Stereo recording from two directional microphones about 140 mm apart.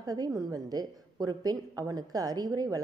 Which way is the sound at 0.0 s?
25° right (ahead or behind).